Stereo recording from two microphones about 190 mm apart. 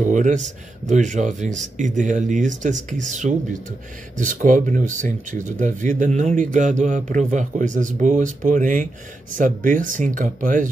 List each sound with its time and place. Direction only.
0.0 s speech: 40° right (ahead or behind)